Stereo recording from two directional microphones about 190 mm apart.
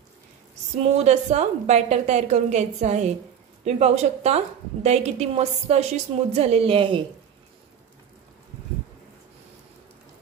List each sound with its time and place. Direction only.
0.7 s a woman's voice: 35° right (ahead or behind)